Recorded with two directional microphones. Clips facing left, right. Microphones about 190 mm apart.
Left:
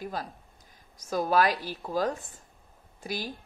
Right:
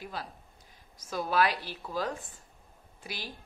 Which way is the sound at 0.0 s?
45° left (ahead or behind).